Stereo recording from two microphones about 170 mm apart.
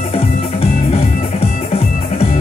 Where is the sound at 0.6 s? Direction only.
35° left (ahead or behind).